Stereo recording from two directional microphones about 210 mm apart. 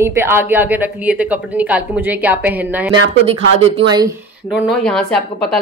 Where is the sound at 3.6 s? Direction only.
30° right (ahead or behind).